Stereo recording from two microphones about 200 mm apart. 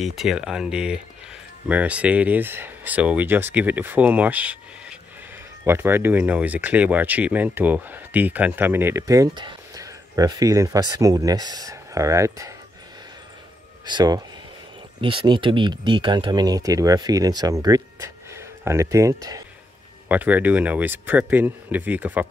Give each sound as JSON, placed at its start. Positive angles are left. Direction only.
{"t": 0.0, "sound": "speech", "side_deg": 0}
{"t": 13.8, "sound": "speech", "side_deg": -20}